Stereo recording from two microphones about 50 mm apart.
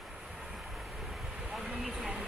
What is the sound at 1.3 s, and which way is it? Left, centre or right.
Vehicle, centre.